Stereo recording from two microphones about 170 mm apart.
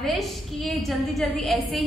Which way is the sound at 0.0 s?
Centre (ahead or behind).